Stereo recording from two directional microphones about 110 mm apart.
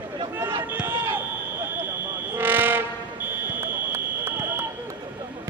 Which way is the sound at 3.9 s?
20° right (ahead or behind).